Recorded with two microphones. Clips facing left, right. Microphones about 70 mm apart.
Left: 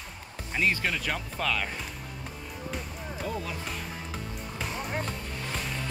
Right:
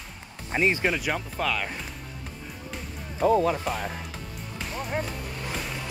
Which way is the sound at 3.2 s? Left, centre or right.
Right.